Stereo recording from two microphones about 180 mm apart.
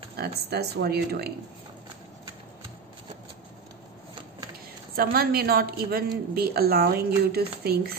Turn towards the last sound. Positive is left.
turn(degrees=-60)  # may be behind; listen again after turning